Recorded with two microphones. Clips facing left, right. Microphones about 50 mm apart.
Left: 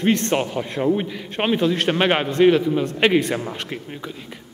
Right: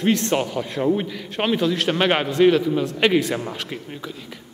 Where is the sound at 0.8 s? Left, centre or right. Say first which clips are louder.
Left 1 dB; centre.